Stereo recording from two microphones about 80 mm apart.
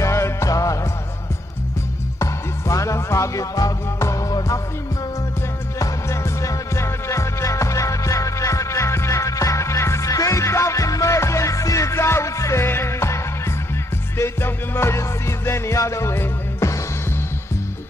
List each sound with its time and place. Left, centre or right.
0.0 s music: left
2.7 s music: left
5.8 s music: left